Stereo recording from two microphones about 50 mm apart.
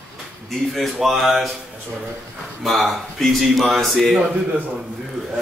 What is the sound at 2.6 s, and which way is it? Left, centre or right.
A man's voice, centre.